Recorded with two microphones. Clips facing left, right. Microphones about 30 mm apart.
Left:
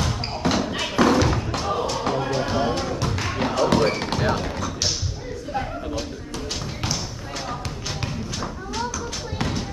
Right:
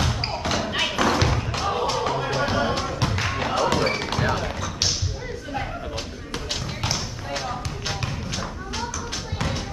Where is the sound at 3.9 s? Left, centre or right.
Right.